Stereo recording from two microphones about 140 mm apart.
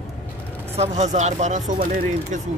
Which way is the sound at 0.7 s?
50° right (ahead or behind).